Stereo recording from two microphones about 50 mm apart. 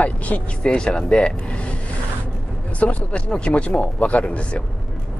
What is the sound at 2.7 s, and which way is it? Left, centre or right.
Speech, left.